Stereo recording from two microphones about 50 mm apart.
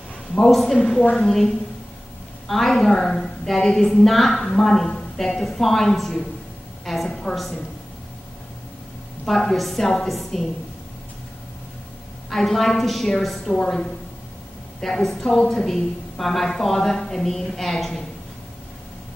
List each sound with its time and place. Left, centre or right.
0.5 s a woman's voice: centre
6.8 s a sound: centre
7.1 s a woman's voice: centre
9.2 s a woman's voice: centre
12.3 s a woman's voice: centre